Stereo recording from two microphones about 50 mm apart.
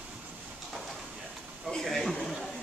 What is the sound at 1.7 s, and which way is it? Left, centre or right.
Speech, centre.